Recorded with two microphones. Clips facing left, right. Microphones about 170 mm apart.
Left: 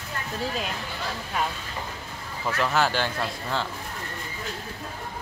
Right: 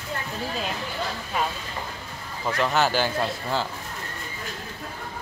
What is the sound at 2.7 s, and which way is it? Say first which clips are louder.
Speech: right 2 dB; centre (ahead or behind).